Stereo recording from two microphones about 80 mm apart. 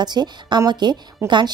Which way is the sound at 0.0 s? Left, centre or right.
Right.